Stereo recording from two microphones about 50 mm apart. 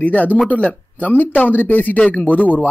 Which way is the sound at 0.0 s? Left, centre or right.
Left.